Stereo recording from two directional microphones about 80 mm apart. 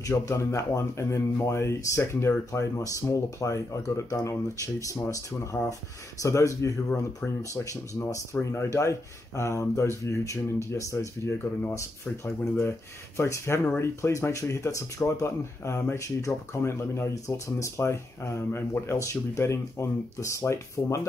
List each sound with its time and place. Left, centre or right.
0.0 s speech: left
8.4 s speech: left
12.3 s speech: left
15.2 s speech: left